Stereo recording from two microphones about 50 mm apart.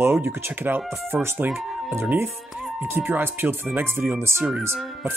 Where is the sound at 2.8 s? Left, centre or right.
Right.